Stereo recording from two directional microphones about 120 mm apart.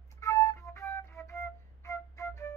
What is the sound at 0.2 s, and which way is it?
Flute, 25° left (ahead or behind).